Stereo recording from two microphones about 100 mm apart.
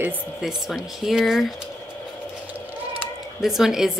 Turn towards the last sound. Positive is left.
turn(degrees=-5)  # may be behind; listen again after turning